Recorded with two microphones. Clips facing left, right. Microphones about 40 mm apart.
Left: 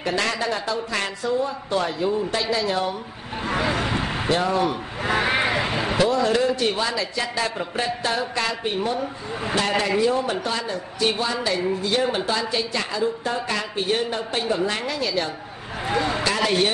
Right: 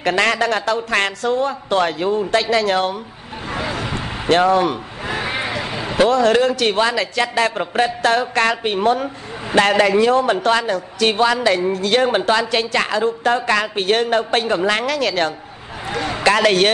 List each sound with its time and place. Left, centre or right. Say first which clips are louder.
0.0 s a woman's voice: right 7 dB; right
3.4 s vehicle: left 1 dB; centre
4.3 s speech: right 8 dB; right
5.0 s a sound: left 2 dB; centre
6.0 s a woman's voice: right 7 dB; right